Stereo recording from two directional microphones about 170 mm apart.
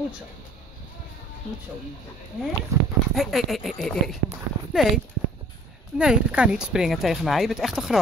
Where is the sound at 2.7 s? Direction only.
20° right (ahead or behind).